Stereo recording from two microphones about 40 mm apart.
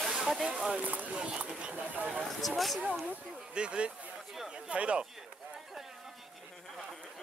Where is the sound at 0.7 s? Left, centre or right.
Right.